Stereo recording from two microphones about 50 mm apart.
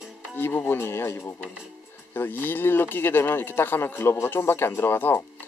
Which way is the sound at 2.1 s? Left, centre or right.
Left.